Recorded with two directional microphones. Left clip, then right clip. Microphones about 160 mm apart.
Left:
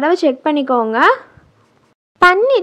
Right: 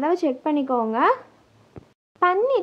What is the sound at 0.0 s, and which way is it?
Speech, 30° left (ahead or behind).